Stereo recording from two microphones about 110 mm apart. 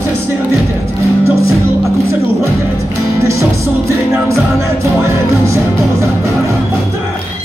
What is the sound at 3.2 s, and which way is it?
Music, 25° right (ahead or behind).